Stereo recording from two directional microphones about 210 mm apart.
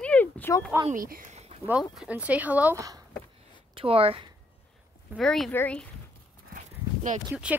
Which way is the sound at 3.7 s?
25° right (ahead or behind).